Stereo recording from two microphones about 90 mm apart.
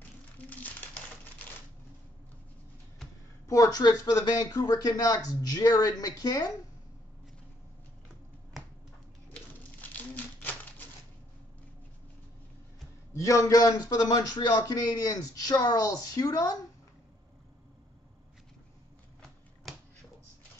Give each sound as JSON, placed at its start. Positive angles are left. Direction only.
{"t": 0.4, "sound": "crumpling", "side_deg": 15}
{"t": 3.4, "sound": "a man's voice", "side_deg": 40}
{"t": 9.3, "sound": "a sound", "side_deg": 20}
{"t": 13.1, "sound": "a man's voice", "side_deg": 35}
{"t": 19.7, "sound": "finger snapping", "side_deg": 0}